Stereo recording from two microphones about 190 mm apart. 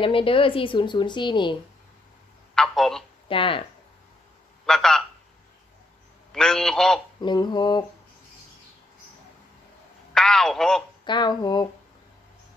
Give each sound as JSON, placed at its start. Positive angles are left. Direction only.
{"t": 0.0, "sound": "a woman's voice", "side_deg": 30}
{"t": 2.5, "sound": "speech", "side_deg": 0}
{"t": 3.3, "sound": "a woman's voice", "side_deg": 25}
{"t": 4.6, "sound": "speech", "side_deg": 5}
{"t": 6.3, "sound": "speech", "side_deg": 5}
{"t": 7.2, "sound": "a woman's voice", "side_deg": 20}
{"t": 10.1, "sound": "speech", "side_deg": 5}
{"t": 11.1, "sound": "a woman's voice", "side_deg": 25}